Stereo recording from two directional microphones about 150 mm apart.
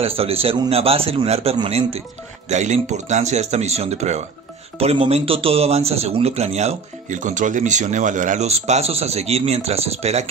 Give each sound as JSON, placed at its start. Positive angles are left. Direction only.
{"t": 0.0, "sound": "speech", "side_deg": -40}